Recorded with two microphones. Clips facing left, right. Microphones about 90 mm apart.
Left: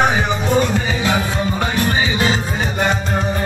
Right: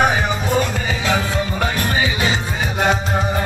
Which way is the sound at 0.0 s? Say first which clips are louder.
Left 1 dB; centre (ahead or behind).